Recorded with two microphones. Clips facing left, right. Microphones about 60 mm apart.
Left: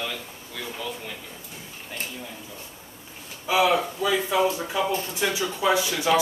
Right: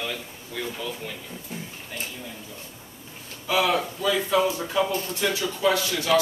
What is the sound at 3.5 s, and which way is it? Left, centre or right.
Speech, centre.